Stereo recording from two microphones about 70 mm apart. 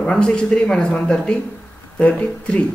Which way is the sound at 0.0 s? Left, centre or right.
Centre.